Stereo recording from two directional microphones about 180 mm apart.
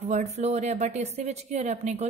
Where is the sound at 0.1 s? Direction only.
35° right (ahead or behind).